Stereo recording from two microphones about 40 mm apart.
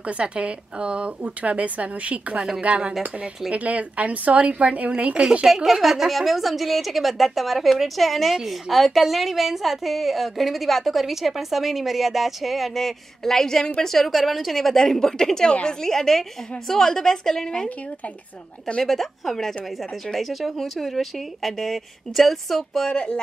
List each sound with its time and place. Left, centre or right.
0.0 s speech: right
5.5 s a woman's voice: centre
18.8 s a woman's voice: centre
22.8 s speech: left